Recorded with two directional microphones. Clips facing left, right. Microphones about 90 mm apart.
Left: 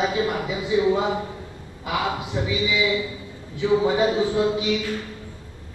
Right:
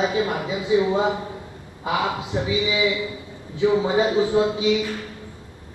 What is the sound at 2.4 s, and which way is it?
Speech, 25° right (ahead or behind).